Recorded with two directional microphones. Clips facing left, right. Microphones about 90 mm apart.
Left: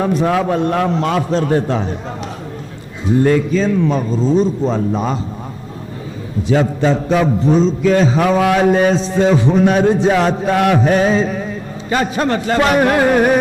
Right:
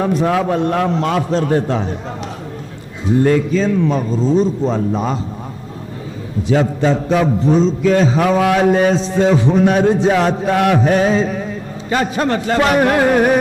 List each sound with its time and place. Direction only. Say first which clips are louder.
0.0 s a man's voice: even; 15° left (ahead or behind)
6.5 s a man's voice: even; 10° left (ahead or behind)